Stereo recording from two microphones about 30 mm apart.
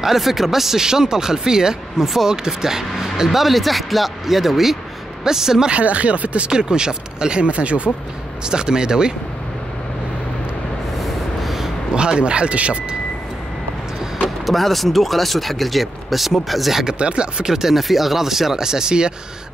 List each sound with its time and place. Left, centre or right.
0.0 s speech: centre
3.3 s speech: centre
5.7 s speech: right
6.5 s speech: right
7.4 s speech: right
8.5 s speech: right
11.0 s a sound: centre
11.9 s speech: right
14.4 s speech: centre
17.0 s speech: right
17.5 s speech: centre; by 19.1 s right